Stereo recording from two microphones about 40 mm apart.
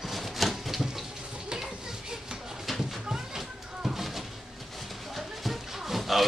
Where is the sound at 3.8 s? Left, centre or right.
Centre.